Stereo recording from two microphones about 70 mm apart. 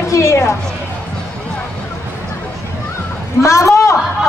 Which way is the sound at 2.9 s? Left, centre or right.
Left.